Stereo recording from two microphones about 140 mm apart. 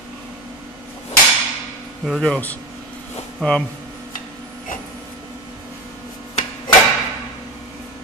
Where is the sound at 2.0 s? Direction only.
5° left (ahead or behind).